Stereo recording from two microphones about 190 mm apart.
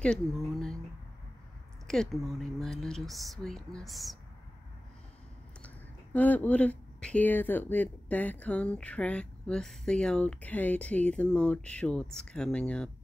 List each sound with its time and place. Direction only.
0.0 s speech: 5° left (ahead or behind)
1.9 s speech: centre (ahead or behind)
6.1 s speech: 10° left (ahead or behind)